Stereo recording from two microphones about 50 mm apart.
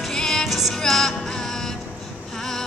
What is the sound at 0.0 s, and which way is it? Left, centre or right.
Music, centre.